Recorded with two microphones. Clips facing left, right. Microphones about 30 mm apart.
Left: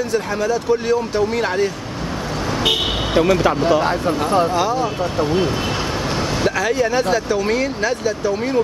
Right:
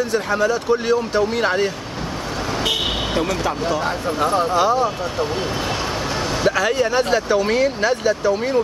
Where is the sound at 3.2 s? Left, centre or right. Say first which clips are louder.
Left 10 dB; centre.